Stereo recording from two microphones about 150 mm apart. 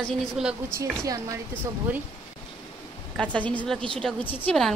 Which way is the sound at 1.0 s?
20° right (ahead or behind).